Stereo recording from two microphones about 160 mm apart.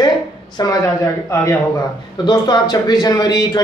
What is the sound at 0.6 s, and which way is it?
A man's voice, 20° left (ahead or behind).